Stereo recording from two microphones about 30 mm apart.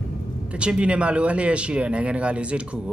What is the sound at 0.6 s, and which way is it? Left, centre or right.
Speech, right.